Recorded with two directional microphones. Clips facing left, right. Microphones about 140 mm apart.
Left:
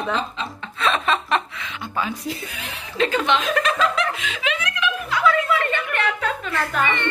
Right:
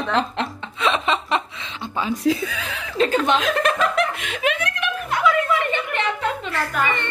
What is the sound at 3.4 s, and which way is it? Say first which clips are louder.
Chuckle: right 1 dB; 55° right (ahead or behind).